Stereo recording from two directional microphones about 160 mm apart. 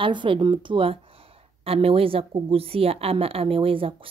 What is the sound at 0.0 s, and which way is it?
A woman's voice, 30° right (ahead or behind).